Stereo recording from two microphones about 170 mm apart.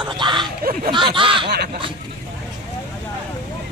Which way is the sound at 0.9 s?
30° right (ahead or behind).